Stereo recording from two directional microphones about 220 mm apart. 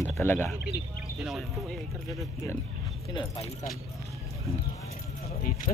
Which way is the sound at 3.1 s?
20° left (ahead or behind).